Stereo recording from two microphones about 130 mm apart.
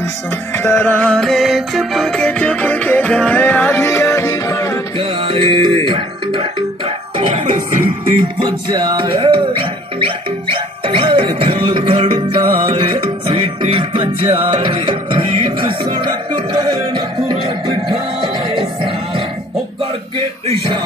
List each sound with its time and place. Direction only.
0.6 s music: 15° left (ahead or behind)
4.9 s music: 40° right (ahead or behind)
8.4 s music: 35° right (ahead or behind)
17.5 s music: 45° right (ahead or behind)
20.4 s speech: 45° right (ahead or behind)